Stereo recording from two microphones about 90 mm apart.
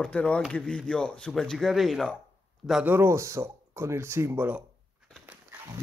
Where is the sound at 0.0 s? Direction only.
10° left (ahead or behind).